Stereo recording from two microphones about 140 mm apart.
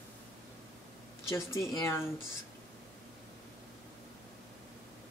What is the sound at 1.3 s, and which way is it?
Speech, 20° left (ahead or behind).